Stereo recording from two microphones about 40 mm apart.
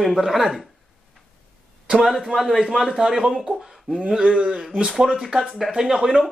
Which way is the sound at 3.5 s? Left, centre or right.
Centre.